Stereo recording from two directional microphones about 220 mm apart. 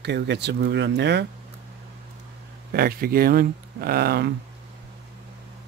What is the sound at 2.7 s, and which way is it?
Speech, 45° right (ahead or behind).